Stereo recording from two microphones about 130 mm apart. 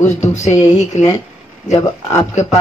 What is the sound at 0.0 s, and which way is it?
Speech, 65° left (ahead or behind).